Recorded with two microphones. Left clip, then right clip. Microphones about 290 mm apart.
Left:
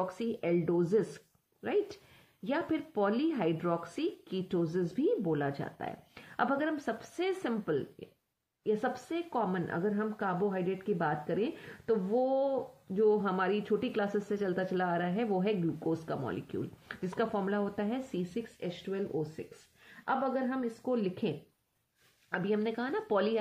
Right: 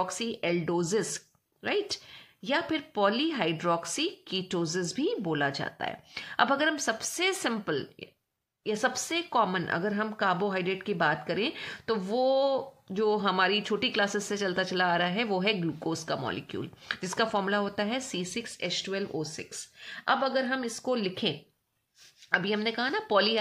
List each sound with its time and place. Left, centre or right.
0.0 s speech: centre